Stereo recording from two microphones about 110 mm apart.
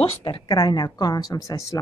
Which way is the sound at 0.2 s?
40° left (ahead or behind).